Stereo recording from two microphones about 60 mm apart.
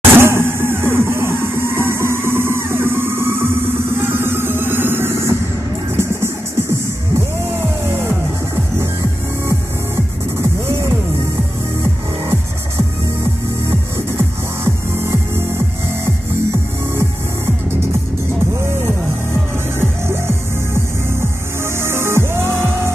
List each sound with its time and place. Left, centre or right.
0.1 s music: right
9.5 s music: right
18.5 s music: right